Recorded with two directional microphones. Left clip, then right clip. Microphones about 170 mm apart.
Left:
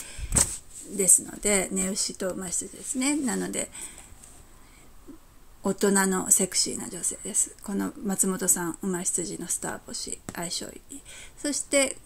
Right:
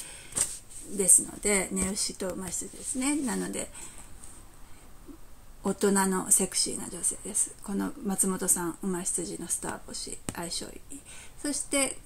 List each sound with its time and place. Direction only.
0.9 s speech: 35° left (ahead or behind)
5.6 s speech: 40° left (ahead or behind)